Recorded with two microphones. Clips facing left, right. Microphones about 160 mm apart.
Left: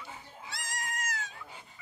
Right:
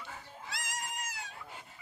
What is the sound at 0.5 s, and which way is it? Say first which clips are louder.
Goat: even; centre (ahead or behind).